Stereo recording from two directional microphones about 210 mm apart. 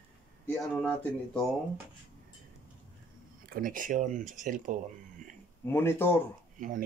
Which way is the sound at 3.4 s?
40° right (ahead or behind).